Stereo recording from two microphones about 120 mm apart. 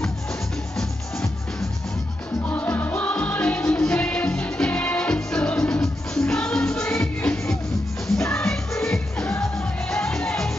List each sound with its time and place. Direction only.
2.4 s music: 15° left (ahead or behind)